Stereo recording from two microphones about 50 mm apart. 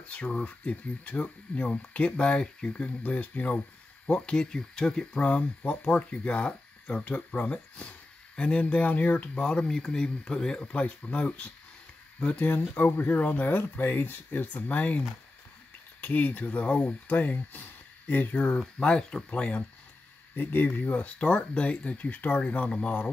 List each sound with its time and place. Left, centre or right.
0.1 s speech: left
4.1 s speech: centre
9.4 s speech: centre; by 13.6 s left
13.6 s speech: left
18.6 s speech: centre
19.3 s speech: left
20.3 s speech: left